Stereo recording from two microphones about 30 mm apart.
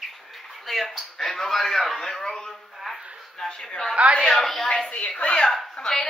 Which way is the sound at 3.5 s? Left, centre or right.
Left.